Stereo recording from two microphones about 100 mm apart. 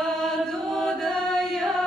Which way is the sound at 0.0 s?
5° left (ahead or behind).